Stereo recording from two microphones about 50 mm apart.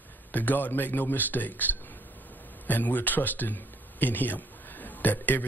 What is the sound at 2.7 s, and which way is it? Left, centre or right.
Speech, left.